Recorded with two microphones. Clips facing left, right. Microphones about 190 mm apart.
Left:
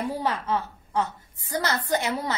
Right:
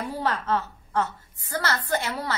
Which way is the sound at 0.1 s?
15° left (ahead or behind).